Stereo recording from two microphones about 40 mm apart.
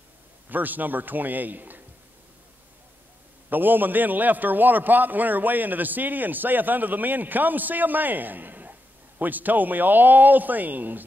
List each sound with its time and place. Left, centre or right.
0.5 s a man's voice: right
3.4 s a man's voice: right